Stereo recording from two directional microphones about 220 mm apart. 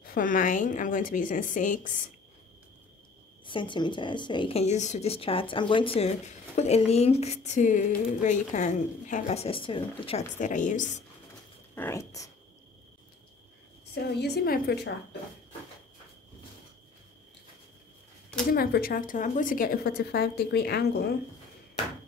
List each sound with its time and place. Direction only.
0.0 s a woman's voice: 40° left (ahead or behind)
3.4 s speech: 20° left (ahead or behind)
11.7 s speech: 10° left (ahead or behind)
13.9 s a woman's voice: 45° left (ahead or behind)
18.5 s a woman's voice: 45° left (ahead or behind)